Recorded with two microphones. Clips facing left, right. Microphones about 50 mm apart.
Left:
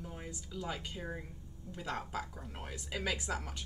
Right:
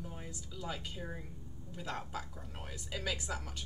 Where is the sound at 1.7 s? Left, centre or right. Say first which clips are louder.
Left 2 dB; centre.